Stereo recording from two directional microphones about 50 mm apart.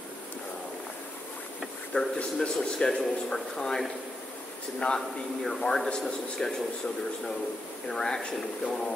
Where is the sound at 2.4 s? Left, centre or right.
Centre.